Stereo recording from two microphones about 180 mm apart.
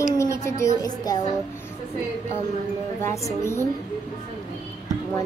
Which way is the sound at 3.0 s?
15° left (ahead or behind).